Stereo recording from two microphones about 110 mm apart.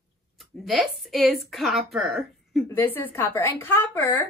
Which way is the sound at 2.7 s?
20° left (ahead or behind).